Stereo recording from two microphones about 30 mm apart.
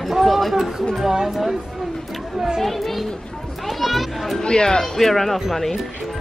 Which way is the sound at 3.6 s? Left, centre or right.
Centre.